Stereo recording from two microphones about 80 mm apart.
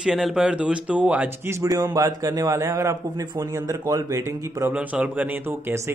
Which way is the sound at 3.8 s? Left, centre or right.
Right.